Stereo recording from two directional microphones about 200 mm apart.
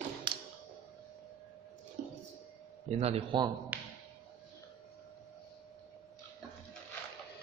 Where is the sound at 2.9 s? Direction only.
30° right (ahead or behind).